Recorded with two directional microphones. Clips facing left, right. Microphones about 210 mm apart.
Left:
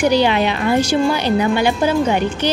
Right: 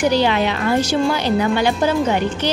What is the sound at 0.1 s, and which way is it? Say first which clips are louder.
Speech: left 2 dB; 15° left (ahead or behind).